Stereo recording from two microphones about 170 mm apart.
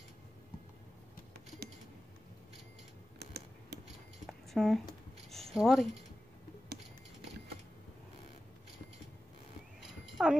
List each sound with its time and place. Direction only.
3.2 s computer keyboard: 70° right (ahead or behind)
4.3 s a sound: centre (ahead or behind)
6.7 s typing: 70° right (ahead or behind)
9.8 s cat: centre (ahead or behind)